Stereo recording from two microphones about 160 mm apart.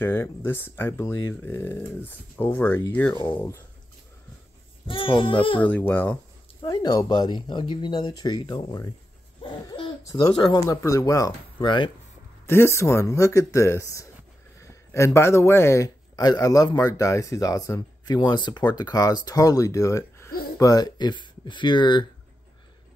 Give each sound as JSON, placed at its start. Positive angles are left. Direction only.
{"t": 0.0, "sound": "speech", "side_deg": 15}
{"t": 4.8, "sound": "speech", "side_deg": 35}
{"t": 5.6, "sound": "speech", "side_deg": 10}
{"t": 6.6, "sound": "speech", "side_deg": 25}
{"t": 9.4, "sound": "hoot", "side_deg": 30}
{"t": 10.0, "sound": "speech", "side_deg": 20}
{"t": 12.4, "sound": "speech", "side_deg": 15}